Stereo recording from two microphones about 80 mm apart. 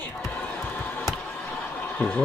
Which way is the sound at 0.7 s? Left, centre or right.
Left.